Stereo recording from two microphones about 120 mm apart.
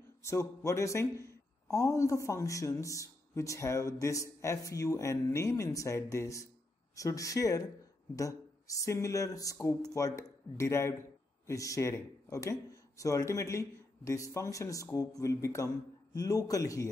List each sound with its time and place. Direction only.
0.2 s speech: 25° left (ahead or behind)